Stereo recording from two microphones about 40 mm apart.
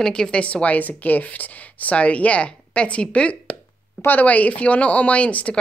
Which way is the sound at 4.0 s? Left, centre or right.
Left.